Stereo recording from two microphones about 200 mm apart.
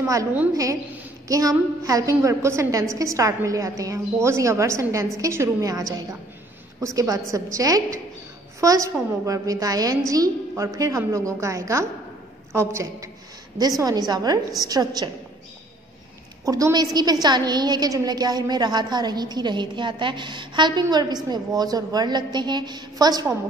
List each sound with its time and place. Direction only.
0.1 s a woman's voice: 10° right (ahead or behind)
16.4 s a woman's voice: 15° right (ahead or behind)